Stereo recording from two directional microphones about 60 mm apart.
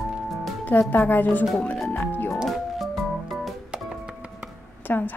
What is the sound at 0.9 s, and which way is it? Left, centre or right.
Speech, left.